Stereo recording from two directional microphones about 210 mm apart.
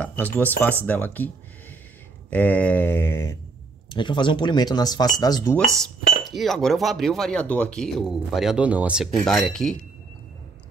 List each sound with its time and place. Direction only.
0.0 s speech: 10° left (ahead or behind)
0.8 s mantra: 10° left (ahead or behind)
2.3 s mantra: 10° left (ahead or behind)
3.9 s speech: 20° left (ahead or behind)
6.2 s speech: centre (ahead or behind)